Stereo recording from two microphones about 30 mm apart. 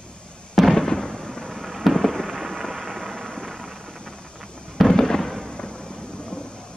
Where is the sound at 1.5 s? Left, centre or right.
Centre.